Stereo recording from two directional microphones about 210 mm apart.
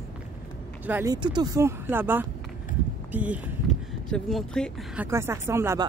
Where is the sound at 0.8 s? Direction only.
10° right (ahead or behind).